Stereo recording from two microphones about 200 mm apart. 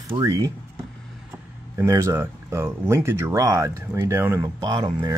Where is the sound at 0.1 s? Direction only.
20° right (ahead or behind).